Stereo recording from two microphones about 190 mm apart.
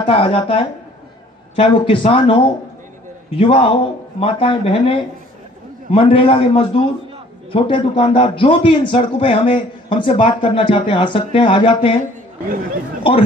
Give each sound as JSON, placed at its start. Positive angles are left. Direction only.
{"t": 0.0, "sound": "a man's voice", "side_deg": 30}